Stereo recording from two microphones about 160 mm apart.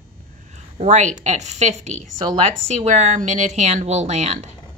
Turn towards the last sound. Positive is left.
turn(degrees=-45)  # may be behind; listen again after turning